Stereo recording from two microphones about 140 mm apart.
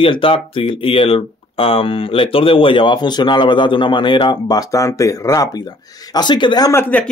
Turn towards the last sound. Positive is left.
turn(degrees=15)  # may be behind; listen again after turning